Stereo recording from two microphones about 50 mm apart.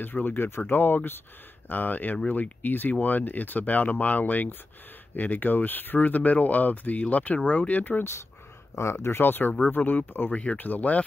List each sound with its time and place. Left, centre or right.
0.0 s speech: left
8.7 s speech: left
10.3 s speech: left